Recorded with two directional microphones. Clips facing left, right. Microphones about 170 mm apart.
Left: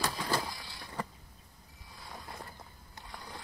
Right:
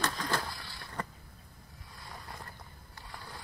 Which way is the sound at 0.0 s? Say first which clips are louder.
Even; 10° left (ahead or behind).